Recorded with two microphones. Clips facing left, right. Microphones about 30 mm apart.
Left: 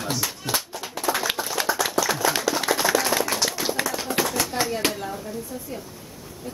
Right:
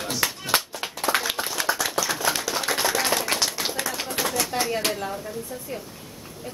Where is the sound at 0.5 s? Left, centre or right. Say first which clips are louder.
Right 5 dB; right.